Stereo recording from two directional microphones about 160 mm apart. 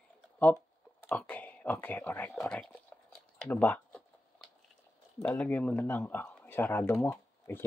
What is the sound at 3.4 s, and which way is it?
Typing, 10° left (ahead or behind).